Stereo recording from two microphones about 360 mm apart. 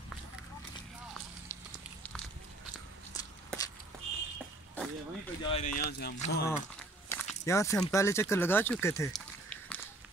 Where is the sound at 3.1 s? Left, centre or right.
Centre.